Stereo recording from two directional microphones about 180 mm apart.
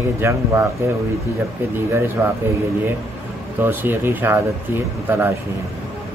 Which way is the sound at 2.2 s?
15° right (ahead or behind).